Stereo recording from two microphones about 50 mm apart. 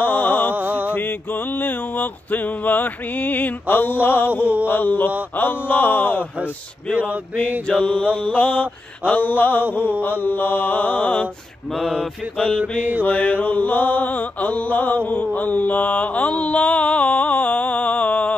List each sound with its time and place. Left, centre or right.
0.0 s mantra: left
0.6 s mantra: right
0.9 s a sound: left
4.6 s mantra: left
7.0 s a sound: right
7.6 s mantra: left
8.2 s mantra: left
12.5 s a sound: right
13.0 s mantra: left